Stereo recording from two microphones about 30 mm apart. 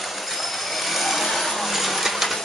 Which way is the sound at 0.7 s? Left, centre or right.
Centre.